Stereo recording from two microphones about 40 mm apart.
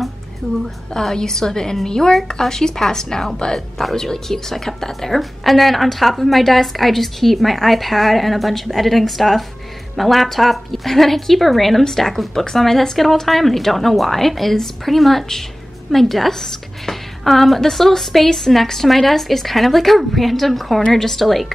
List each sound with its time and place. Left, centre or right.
0.9 s a woman's voice: centre